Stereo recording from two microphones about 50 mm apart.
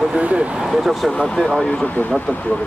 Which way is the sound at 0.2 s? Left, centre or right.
Right.